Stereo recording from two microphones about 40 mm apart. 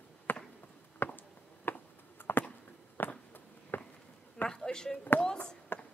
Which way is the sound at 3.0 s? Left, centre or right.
Left.